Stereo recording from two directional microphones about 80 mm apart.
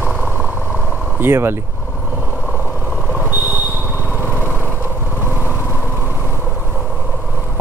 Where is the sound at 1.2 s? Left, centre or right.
Right.